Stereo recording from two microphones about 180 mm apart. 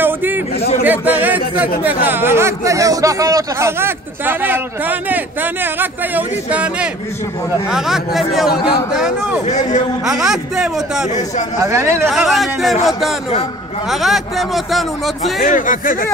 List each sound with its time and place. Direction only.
0.0 s chatter: 10° right (ahead or behind)
0.8 s a sound: 10° right (ahead or behind)
2.0 s speech: 10° right (ahead or behind)
9.5 s a man's voice: 40° left (ahead or behind)
10.0 s speech: centre (ahead or behind)
11.6 s speech: 15° right (ahead or behind)
12.1 s speech: centre (ahead or behind)
13.8 s speech: centre (ahead or behind)
15.4 s speech: 45° left (ahead or behind)